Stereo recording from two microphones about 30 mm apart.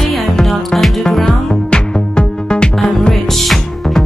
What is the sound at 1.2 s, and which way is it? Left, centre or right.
Music, left.